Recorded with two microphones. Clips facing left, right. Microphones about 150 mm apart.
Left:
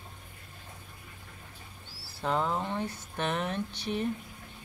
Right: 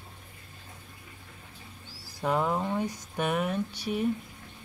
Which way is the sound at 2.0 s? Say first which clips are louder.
Right 2 dB; 10° right (ahead or behind).